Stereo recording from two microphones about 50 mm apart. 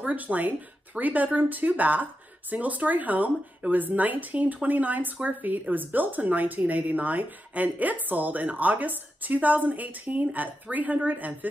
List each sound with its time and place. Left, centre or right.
0.0 s speech: right